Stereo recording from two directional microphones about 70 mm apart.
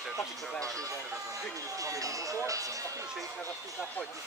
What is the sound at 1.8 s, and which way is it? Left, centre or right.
Speech, right.